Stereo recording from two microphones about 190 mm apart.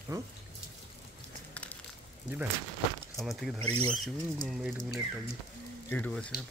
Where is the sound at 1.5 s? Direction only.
5° left (ahead or behind).